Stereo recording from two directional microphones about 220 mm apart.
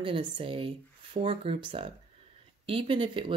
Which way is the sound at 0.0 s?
25° right (ahead or behind).